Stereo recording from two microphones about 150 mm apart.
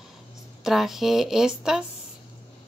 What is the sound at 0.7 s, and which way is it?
Speech, centre (ahead or behind).